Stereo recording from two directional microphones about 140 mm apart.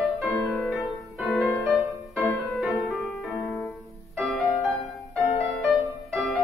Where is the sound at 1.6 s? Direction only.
15° right (ahead or behind).